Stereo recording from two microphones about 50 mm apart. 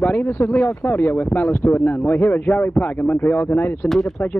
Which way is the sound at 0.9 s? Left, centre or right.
Left.